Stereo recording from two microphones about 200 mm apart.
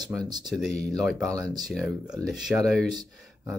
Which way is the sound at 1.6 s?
Centre (ahead or behind).